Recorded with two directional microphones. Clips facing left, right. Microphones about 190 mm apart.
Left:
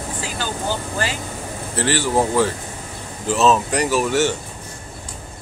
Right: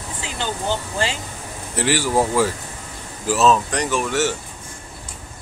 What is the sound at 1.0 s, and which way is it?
Speech, 25° right (ahead or behind).